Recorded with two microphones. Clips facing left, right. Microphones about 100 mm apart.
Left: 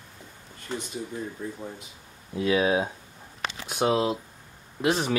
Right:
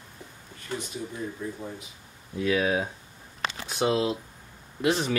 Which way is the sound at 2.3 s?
20° left (ahead or behind).